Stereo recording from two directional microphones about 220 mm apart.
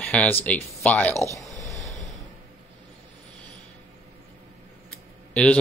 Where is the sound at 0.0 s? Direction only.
5° left (ahead or behind).